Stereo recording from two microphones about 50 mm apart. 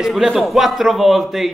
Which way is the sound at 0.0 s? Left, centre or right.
Centre.